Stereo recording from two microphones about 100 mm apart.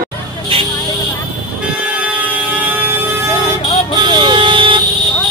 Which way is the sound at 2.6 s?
20° right (ahead or behind).